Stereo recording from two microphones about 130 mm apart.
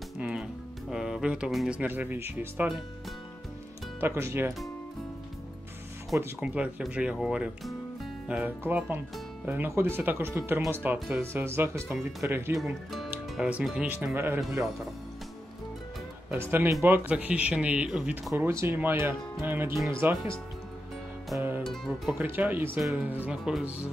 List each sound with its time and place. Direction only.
0.2 s music: 5° right (ahead or behind)
1.8 s speech: 15° right (ahead or behind)
4.0 s speech: 20° right (ahead or behind)
6.4 s speech: 10° right (ahead or behind)
13.1 s music: 10° right (ahead or behind)
13.7 s speech: 10° right (ahead or behind)
16.3 s speech: 15° right (ahead or behind)
18.3 s speech: 20° right (ahead or behind)
21.4 s music: 15° right (ahead or behind)
21.6 s speech: centre (ahead or behind)
22.2 s speech: 15° right (ahead or behind)